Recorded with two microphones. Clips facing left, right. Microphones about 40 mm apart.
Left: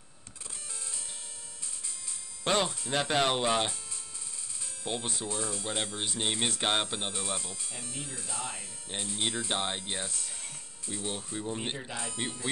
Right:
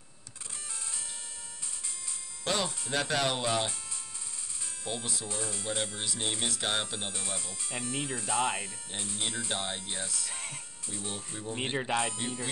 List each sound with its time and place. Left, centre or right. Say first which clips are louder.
2.4 s speech: left 3 dB; left
4.8 s speech: left 2 dB; left
7.7 s speech: right 11 dB; right
8.9 s speech: left 3 dB; left
10.2 s speech: right 4 dB; right
10.9 s speech: left 3 dB; left
11.8 s speech: right 8 dB; right